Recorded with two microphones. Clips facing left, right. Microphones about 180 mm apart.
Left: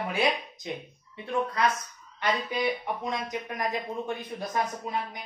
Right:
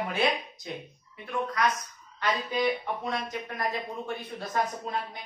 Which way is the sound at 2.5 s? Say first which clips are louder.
Right 1 dB; 15° left (ahead or behind).